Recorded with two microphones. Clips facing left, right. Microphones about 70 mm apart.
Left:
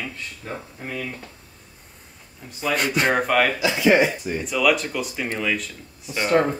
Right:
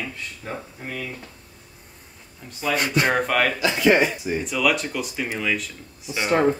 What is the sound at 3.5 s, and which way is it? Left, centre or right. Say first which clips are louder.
Speech: even; right.